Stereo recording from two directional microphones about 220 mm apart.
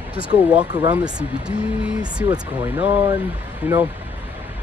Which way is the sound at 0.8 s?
5° right (ahead or behind).